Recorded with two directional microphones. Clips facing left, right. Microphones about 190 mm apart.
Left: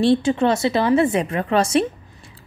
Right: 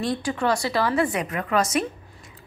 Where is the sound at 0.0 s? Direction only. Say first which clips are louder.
Left 8 dB; 25° left (ahead or behind).